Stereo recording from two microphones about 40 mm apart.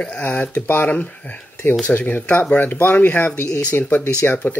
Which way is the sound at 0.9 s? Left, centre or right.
Left.